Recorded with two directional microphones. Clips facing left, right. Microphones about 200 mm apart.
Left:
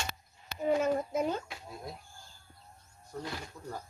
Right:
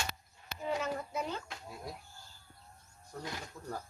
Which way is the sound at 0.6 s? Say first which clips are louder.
Left 7 dB; 50° left (ahead or behind).